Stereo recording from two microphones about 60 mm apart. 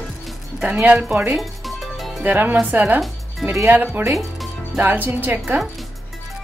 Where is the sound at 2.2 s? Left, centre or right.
Right.